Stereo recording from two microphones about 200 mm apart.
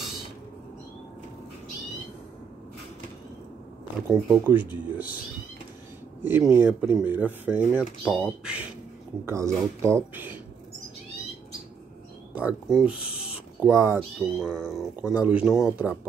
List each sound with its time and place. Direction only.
4.1 s speech: 5° right (ahead or behind)
6.2 s speech: 10° right (ahead or behind)
12.4 s speech: 5° right (ahead or behind)
13.1 s a sound: 30° left (ahead or behind)
13.6 s speech: 15° right (ahead or behind)
13.9 s speech: centre (ahead or behind)